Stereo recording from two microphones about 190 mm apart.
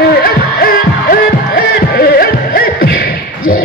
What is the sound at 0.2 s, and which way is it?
Music, 50° left (ahead or behind).